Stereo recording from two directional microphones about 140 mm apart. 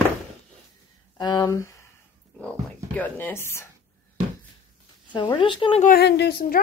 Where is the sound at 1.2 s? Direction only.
30° left (ahead or behind).